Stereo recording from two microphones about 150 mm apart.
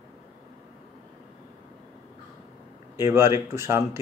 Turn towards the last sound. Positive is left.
turn(degrees=-15)  # may be behind; listen again after turning